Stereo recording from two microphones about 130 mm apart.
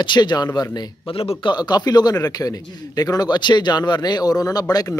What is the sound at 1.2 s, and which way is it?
Speech, 45° left (ahead or behind).